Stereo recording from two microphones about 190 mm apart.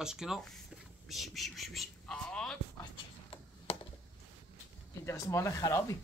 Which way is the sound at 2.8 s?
25° left (ahead or behind).